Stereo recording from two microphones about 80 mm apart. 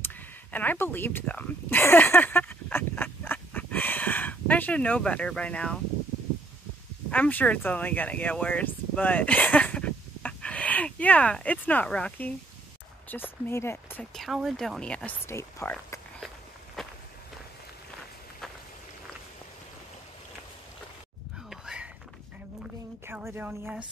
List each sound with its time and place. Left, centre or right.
0.0 s a sound: left
7.1 s speech: centre
13.1 s speech: left
14.1 s speech: centre
14.8 s speech: centre
15.2 s speech: left
16.8 s run: centre
21.5 s a sound: centre
23.2 s a sound: right